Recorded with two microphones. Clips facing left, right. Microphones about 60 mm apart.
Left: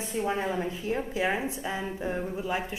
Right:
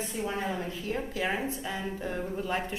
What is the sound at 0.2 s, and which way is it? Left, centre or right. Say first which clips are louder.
A woman's voice: left 4 dB; left.